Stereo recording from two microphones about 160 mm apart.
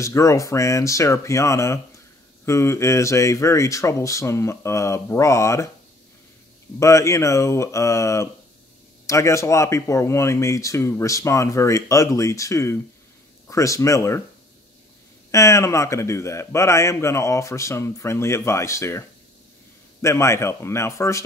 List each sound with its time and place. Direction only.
0.0 s a man's voice: 20° left (ahead or behind)
6.8 s speech: 20° left (ahead or behind)
15.3 s a man's voice: 20° left (ahead or behind)